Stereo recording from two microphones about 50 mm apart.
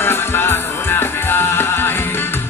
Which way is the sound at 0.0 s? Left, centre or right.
Left.